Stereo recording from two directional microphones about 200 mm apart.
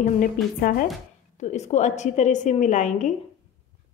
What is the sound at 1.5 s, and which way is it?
Speech, 35° left (ahead or behind).